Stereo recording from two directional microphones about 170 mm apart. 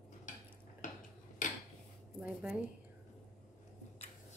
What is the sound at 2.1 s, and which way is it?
Speech, 5° right (ahead or behind).